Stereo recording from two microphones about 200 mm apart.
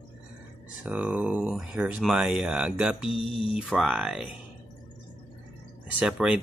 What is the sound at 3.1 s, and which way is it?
Speech, 25° left (ahead or behind).